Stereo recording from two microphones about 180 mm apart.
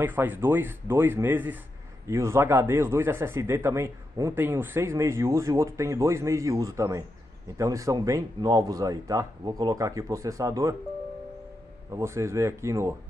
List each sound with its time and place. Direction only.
0.0 s speech: 10° right (ahead or behind)
11.9 s speech: 15° right (ahead or behind)